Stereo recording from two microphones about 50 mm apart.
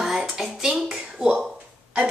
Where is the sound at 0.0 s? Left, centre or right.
Centre.